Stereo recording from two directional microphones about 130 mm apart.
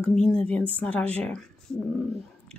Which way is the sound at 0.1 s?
10° left (ahead or behind).